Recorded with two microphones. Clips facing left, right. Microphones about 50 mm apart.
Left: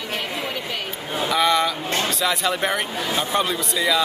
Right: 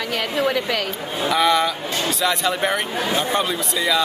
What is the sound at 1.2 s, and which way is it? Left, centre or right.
Speech, centre.